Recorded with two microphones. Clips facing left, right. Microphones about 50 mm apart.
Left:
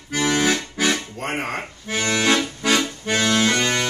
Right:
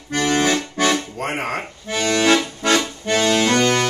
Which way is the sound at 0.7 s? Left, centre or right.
Centre.